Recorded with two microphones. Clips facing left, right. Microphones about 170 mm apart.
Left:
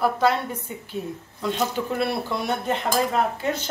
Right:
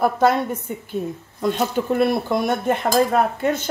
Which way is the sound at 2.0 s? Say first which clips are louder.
Right 8 dB; 45° right (ahead or behind).